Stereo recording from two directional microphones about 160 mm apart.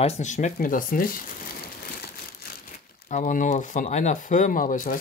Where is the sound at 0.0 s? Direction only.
45° left (ahead or behind); by 1.2 s 60° left (ahead or behind).